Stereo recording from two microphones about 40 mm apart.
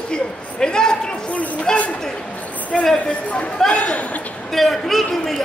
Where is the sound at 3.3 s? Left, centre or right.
Left.